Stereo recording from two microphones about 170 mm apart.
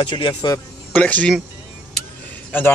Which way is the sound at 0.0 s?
30° left (ahead or behind).